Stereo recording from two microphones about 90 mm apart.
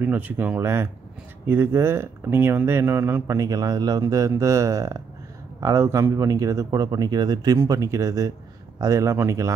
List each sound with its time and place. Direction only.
0.0 s speech: 20° right (ahead or behind)
3.3 s a man's voice: 45° right (ahead or behind)
4.0 s speech: 40° right (ahead or behind)
7.5 s speech: 35° right (ahead or behind)